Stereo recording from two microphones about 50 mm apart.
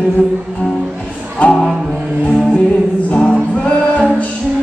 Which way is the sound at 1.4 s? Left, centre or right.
Left.